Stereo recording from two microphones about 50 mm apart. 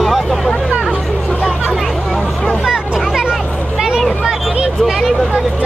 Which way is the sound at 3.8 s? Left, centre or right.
Centre.